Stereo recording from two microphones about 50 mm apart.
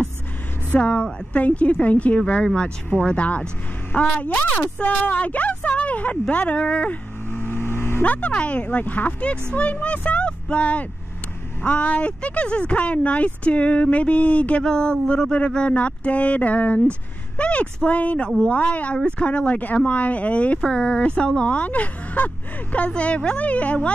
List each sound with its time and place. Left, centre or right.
0.7 s speech: left
7.2 s vehicle: left
8.0 s speech: left